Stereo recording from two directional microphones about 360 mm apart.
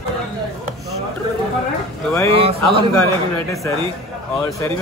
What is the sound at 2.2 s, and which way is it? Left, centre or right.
Speech, centre.